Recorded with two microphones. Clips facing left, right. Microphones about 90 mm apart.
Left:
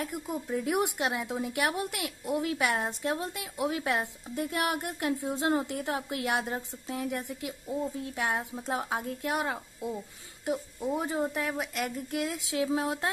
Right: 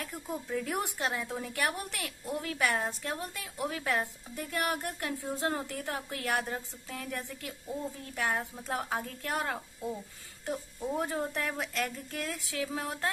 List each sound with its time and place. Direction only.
0.0 s a woman's voice: 15° left (ahead or behind)